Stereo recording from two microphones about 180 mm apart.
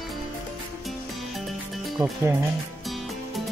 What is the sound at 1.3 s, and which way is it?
Music, centre (ahead or behind).